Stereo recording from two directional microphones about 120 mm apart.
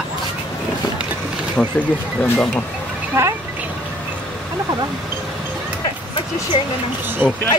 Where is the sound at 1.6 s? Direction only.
5° left (ahead or behind).